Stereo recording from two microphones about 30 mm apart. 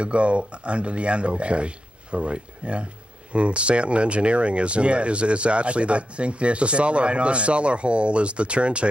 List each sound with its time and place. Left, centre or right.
0.0 s speech: right